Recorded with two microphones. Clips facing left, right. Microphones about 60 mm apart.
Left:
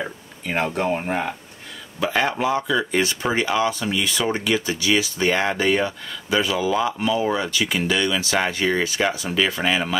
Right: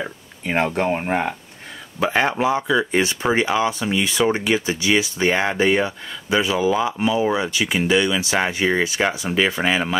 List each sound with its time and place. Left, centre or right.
0.5 s speech: centre